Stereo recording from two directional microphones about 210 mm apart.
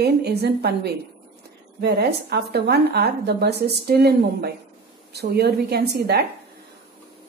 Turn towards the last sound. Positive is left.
turn(degrees=-50)  # may be behind; listen again after turning